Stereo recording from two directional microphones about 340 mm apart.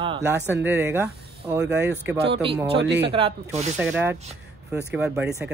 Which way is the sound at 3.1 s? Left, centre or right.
Centre.